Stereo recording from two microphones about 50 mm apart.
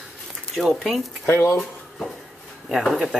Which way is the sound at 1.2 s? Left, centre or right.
Left.